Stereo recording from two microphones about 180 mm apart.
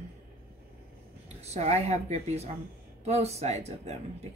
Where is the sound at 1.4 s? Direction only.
35° right (ahead or behind).